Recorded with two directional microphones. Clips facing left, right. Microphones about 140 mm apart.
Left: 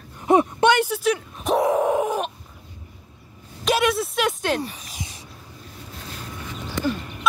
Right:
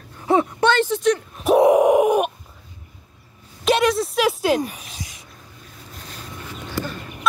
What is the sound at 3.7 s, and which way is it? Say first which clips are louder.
A woman's voice: right 3 dB; centre (ahead or behind).